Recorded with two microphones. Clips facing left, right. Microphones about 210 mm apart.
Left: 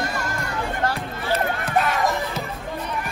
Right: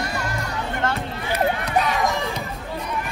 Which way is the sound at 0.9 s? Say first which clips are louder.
Left 1 dB; 15° right (ahead or behind).